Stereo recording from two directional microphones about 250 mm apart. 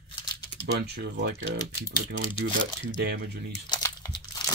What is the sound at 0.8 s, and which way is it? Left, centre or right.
Speech, right.